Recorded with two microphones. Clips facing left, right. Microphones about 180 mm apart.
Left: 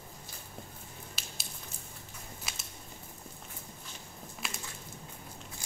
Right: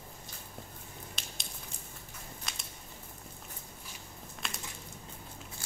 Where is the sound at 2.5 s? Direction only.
5° left (ahead or behind).